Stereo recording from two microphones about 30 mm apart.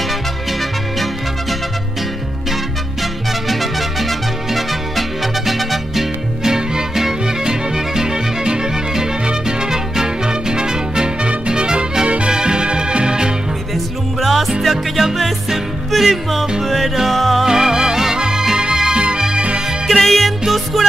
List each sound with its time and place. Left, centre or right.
0.5 s music: centre
2.5 s music: centre
6.4 s music: centre
14.2 s music: centre
17.5 s music: centre
19.9 s music: centre